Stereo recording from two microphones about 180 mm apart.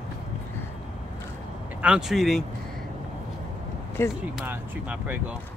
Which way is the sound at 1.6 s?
5° right (ahead or behind).